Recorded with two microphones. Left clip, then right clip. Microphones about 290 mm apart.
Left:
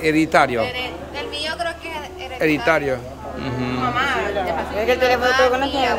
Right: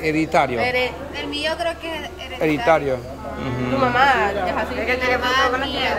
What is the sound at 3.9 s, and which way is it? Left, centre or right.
Speech, centre.